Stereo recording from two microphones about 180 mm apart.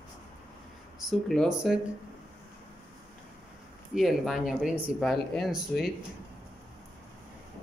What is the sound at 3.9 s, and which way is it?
Speech, centre (ahead or behind).